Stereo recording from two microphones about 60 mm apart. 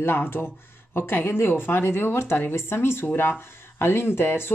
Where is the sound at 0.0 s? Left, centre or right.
Left.